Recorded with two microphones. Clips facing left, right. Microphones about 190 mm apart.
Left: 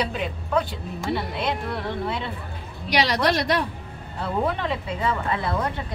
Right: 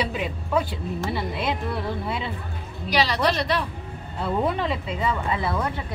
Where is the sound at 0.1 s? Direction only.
5° right (ahead or behind).